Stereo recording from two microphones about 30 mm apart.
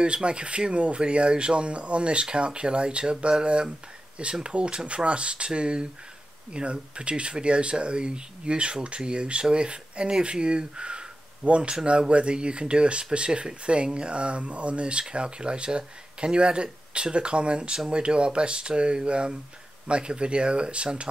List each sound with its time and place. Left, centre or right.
0.0 s speech: right